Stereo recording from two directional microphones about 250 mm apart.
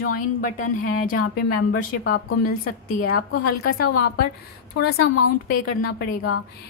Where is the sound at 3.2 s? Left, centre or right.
Left.